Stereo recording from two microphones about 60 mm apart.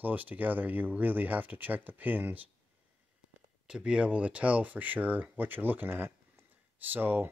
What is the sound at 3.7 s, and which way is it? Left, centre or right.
Speech, centre.